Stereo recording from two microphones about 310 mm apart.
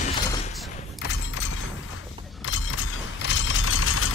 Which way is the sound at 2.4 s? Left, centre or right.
Left.